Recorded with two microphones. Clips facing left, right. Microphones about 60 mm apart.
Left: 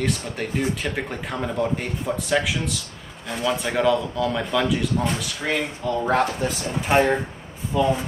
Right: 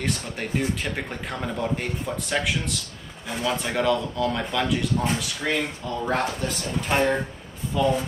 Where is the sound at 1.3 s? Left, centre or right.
Centre.